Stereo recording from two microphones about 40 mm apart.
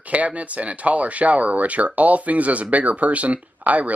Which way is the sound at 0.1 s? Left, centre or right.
Right.